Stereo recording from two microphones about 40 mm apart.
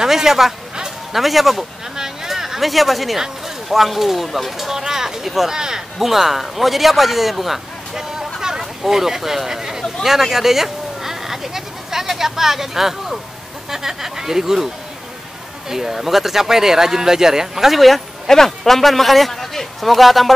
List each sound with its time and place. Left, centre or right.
0.0 s speech: centre
0.7 s a sound: centre
3.6 s speech: centre
6.0 s speech: centre
15.7 s speech: centre